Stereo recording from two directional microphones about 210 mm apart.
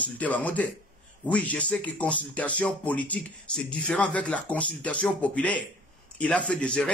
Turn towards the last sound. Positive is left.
turn(degrees=5)  # may be behind; listen again after turning